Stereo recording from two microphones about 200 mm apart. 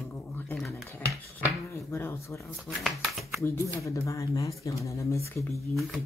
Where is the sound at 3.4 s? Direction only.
15° left (ahead or behind).